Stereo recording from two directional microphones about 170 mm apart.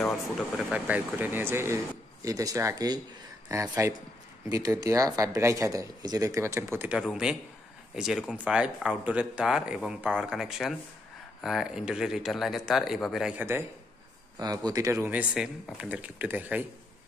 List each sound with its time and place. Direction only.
0.0 s speech: 5° left (ahead or behind)